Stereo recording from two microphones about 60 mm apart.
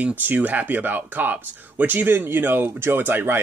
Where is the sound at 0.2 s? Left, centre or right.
Right.